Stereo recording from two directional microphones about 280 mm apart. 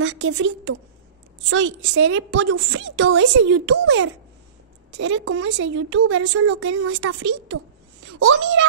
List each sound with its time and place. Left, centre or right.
0.0 s a woman's voice: right